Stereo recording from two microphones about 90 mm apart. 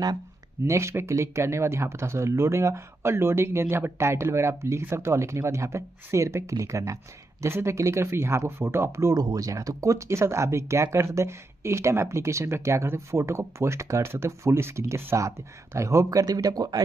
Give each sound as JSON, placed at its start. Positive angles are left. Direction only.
{"t": 0.7, "sound": "speech", "side_deg": -30}